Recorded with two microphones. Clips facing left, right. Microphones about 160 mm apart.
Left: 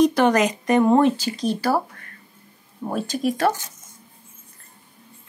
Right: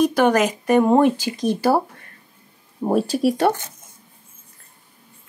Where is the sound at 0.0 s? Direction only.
5° right (ahead or behind).